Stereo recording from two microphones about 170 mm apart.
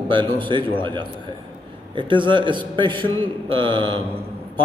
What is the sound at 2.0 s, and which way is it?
A man's voice, 30° right (ahead or behind).